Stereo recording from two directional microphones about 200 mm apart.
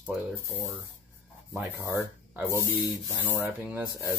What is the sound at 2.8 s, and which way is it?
Speech, 10° right (ahead or behind).